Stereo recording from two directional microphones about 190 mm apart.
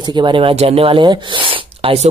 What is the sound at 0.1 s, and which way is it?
Speech, 25° right (ahead or behind).